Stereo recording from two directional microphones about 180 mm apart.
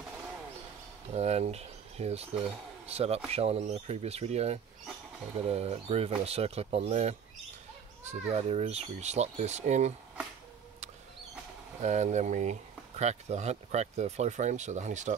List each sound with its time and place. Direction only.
1.1 s speech: 35° right (ahead or behind)
11.8 s speech: 40° right (ahead or behind)